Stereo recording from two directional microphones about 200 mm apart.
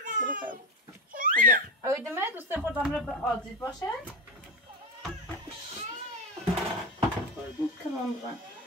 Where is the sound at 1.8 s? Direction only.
15° right (ahead or behind); by 4.1 s 10° left (ahead or behind).